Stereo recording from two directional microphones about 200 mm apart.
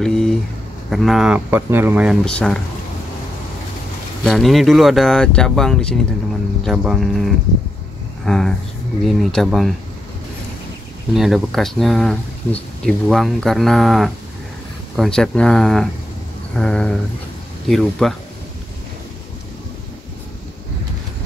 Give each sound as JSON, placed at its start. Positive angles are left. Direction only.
{"t": 0.0, "sound": "a sound", "side_deg": 0}
{"t": 0.8, "sound": "speech", "side_deg": 0}
{"t": 4.2, "sound": "speech", "side_deg": 0}
{"t": 11.1, "sound": "speech", "side_deg": 0}